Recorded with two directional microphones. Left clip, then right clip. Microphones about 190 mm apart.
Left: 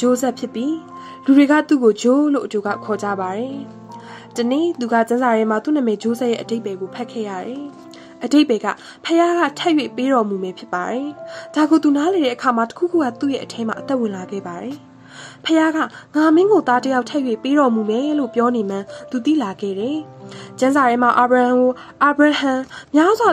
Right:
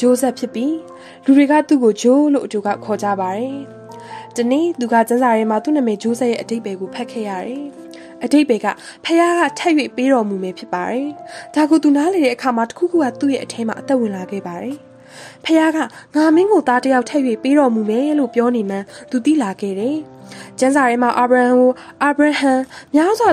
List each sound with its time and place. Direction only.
0.0 s a woman's voice: 30° right (ahead or behind)